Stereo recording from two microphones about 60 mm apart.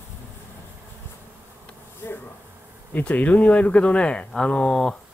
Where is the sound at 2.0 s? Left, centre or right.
Left.